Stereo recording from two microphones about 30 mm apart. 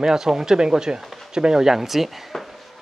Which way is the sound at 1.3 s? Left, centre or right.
Right.